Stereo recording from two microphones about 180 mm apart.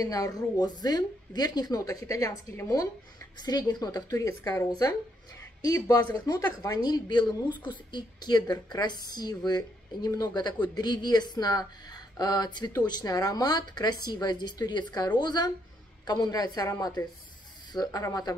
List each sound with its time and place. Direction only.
0.0 s a woman's voice: 20° left (ahead or behind)